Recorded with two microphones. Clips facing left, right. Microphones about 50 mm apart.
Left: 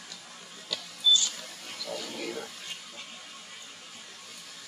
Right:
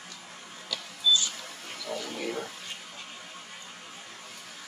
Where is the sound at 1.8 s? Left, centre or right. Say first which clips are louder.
Right 2 dB; right.